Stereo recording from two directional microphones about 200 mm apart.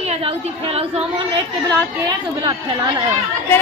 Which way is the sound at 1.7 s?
20° right (ahead or behind).